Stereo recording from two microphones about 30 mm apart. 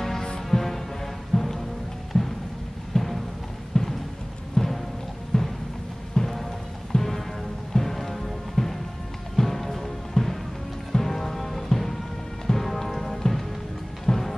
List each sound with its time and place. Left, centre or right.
0.0 s music: centre
3.8 s music: left
6.1 s music: centre